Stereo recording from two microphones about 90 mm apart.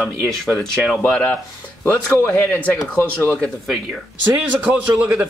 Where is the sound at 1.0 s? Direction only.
15° left (ahead or behind).